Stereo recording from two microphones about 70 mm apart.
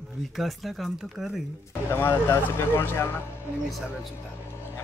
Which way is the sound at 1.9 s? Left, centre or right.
Left.